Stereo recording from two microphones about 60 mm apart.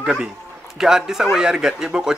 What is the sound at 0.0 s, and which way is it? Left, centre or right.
A man's voice, centre.